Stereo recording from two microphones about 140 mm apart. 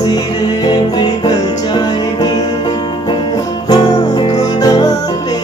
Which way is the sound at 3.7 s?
30° left (ahead or behind).